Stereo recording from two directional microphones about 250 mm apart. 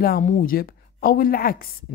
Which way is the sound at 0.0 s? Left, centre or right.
Left.